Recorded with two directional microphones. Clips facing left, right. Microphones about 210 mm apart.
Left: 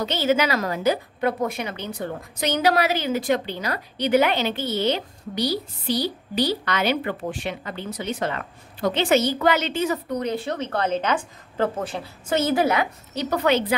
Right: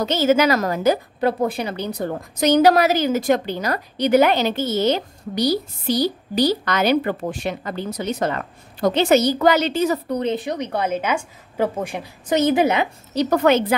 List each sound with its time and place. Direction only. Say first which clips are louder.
0.0 s a woman's voice: right 5 dB; 45° right (ahead or behind)
1.4 s a woman's voice: right 4 dB; 30° right (ahead or behind)
10.3 s a woman's voice: right 2 dB; 15° right (ahead or behind)
13.1 s a woman's voice: right 5 dB; 45° right (ahead or behind)